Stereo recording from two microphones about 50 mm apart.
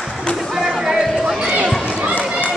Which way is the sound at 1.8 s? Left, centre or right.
Centre.